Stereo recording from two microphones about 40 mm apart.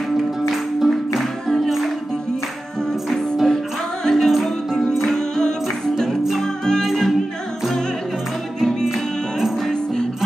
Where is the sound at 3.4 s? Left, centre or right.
Centre.